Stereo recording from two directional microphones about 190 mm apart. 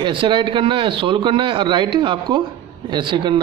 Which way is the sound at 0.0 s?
25° right (ahead or behind).